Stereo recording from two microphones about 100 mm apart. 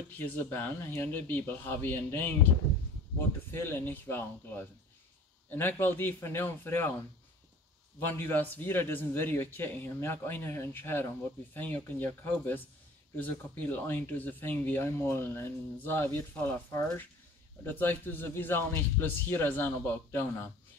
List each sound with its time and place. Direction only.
0.2 s speech: 20° left (ahead or behind)
3.5 s speech: 25° left (ahead or behind)
8.0 s speech: 20° left (ahead or behind)